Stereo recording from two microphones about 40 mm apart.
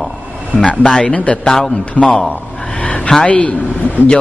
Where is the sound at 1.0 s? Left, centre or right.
Left.